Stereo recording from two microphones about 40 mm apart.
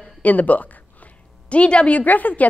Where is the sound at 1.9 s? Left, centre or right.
Left.